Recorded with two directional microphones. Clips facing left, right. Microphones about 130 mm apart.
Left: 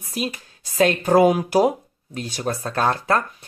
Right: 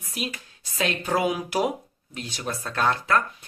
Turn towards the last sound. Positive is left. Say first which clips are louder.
# left 3 dB
turn(degrees=40)  # may be behind; listen again after turning